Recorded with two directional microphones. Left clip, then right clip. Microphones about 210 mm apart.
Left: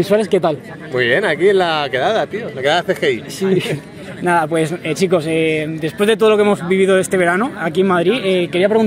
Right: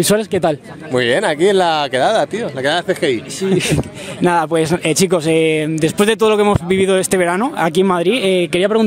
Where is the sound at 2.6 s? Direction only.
30° right (ahead or behind).